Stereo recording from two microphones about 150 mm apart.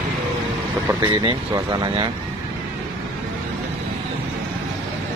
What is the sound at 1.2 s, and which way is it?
Speech, 30° right (ahead or behind).